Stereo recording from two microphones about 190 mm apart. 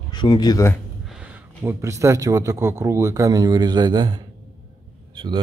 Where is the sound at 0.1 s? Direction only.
20° left (ahead or behind).